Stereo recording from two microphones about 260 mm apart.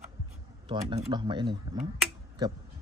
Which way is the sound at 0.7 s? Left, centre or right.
Right.